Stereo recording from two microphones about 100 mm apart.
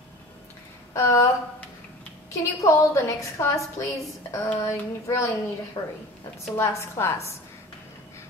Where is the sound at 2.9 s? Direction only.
30° left (ahead or behind).